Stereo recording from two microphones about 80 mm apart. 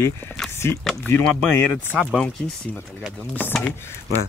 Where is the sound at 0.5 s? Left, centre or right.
Left.